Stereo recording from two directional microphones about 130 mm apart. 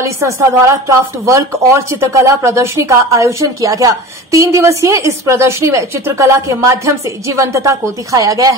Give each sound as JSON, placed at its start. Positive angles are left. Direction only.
{"t": 0.0, "sound": "a woman's voice", "side_deg": -25}